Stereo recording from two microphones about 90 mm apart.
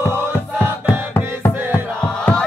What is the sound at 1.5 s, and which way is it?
Music, 20° right (ahead or behind).